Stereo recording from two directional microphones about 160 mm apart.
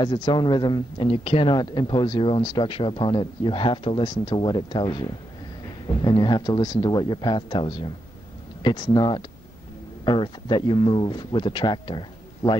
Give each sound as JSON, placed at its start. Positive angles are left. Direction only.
{"t": 0.0, "sound": "speech", "side_deg": 30}